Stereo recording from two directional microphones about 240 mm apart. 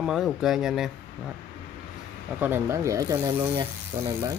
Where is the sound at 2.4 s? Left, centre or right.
Centre.